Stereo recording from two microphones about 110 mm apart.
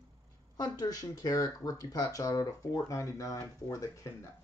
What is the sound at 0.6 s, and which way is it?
Speech, 35° left (ahead or behind).